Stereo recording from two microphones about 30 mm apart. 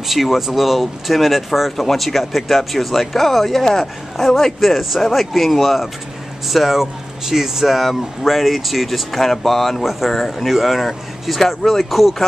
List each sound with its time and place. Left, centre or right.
0.1 s speech: centre
4.6 s speech: centre
9.8 s speech: centre
10.1 s speech: centre
11.4 s speech: centre
11.9 s speech: centre